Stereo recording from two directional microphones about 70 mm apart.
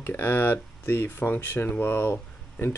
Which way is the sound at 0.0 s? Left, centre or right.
Left.